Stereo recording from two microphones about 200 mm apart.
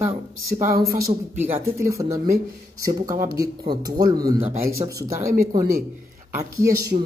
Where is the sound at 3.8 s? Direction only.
20° right (ahead or behind).